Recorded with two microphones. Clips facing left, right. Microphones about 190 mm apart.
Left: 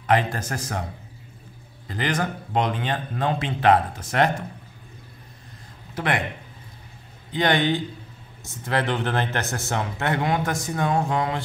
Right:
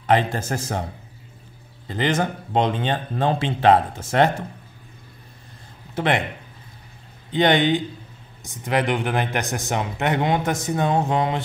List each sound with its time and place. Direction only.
0.0 s speech: 25° right (ahead or behind)
1.9 s speech: 25° right (ahead or behind)
5.9 s speech: 25° right (ahead or behind)
7.3 s a man's voice: 20° right (ahead or behind)